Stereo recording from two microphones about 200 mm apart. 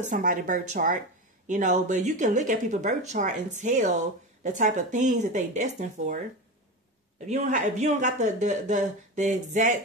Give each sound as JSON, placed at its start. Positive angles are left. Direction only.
{"t": 0.0, "sound": "speech", "side_deg": -40}
{"t": 7.2, "sound": "speech", "side_deg": -35}